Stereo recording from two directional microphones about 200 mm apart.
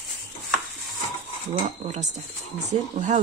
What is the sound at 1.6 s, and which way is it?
Speech, 35° right (ahead or behind).